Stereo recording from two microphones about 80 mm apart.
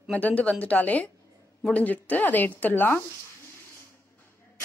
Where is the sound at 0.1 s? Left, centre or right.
Centre.